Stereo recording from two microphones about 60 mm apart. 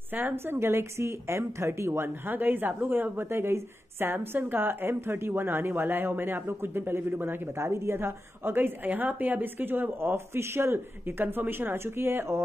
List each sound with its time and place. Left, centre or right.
0.1 s speech: right
7.5 s speech: right